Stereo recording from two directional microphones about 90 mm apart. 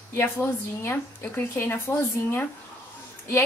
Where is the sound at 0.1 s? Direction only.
25° left (ahead or behind).